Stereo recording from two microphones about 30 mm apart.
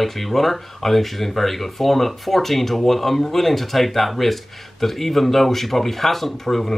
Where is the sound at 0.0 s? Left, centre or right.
Centre.